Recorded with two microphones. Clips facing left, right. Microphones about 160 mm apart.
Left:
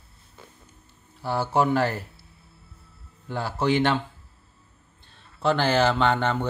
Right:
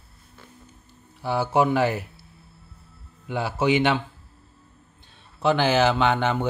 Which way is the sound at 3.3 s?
10° right (ahead or behind).